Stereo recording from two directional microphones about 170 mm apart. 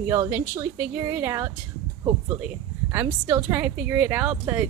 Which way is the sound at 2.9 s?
15° right (ahead or behind).